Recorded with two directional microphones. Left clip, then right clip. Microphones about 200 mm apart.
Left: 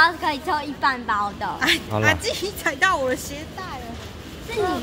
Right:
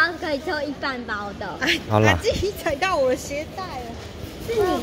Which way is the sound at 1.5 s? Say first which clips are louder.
Right 2 dB; 55° left (ahead or behind).